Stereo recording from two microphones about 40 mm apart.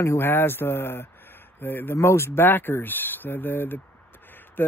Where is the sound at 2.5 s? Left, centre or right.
Left.